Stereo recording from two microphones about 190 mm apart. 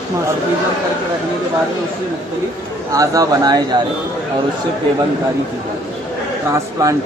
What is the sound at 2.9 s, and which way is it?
Speech, 20° right (ahead or behind).